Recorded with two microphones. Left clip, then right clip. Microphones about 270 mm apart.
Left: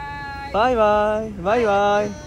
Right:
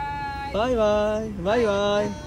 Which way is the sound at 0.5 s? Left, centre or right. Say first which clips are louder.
Left 5 dB; centre.